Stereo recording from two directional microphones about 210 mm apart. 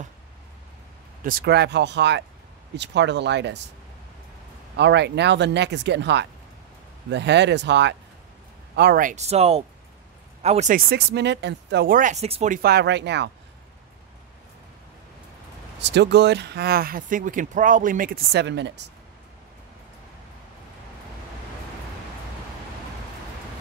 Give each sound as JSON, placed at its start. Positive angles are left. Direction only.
{"t": 1.2, "sound": "speech", "side_deg": -45}
{"t": 4.7, "sound": "speech", "side_deg": -55}
{"t": 10.9, "sound": "speech", "side_deg": -50}
{"t": 12.6, "sound": "speech", "side_deg": -55}
{"t": 15.8, "sound": "speech", "side_deg": -55}